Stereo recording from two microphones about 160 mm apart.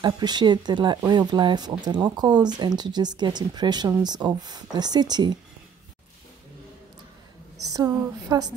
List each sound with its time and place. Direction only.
0.0 s speech: 25° right (ahead or behind)
7.7 s speech: 25° right (ahead or behind)